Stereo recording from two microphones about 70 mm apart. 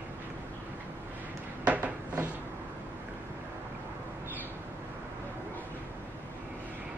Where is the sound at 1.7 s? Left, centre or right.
Right.